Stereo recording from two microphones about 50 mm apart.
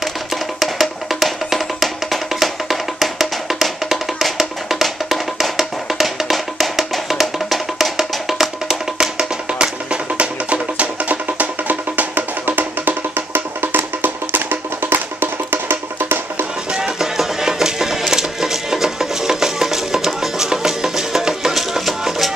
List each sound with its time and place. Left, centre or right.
0.6 s music: centre
9.5 s music: centre; by 16.4 s right
16.7 s music: centre